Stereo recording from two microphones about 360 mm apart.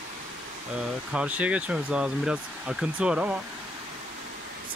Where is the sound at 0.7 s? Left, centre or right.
Centre.